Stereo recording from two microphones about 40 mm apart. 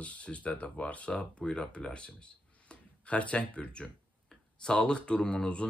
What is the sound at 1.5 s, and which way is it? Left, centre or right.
Speech, left.